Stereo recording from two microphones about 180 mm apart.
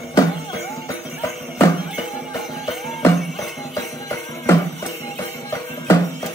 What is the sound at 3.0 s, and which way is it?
Music, 15° left (ahead or behind).